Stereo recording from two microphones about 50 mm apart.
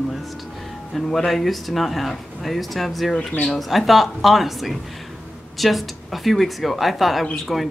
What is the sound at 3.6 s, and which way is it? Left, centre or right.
Speech, centre.